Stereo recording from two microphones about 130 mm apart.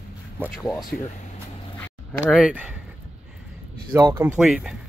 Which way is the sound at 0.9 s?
5° left (ahead or behind).